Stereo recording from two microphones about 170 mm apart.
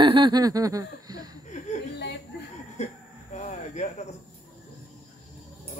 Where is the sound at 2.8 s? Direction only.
40° left (ahead or behind).